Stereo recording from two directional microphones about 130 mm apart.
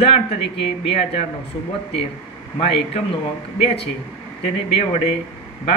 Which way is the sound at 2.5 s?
45° left (ahead or behind).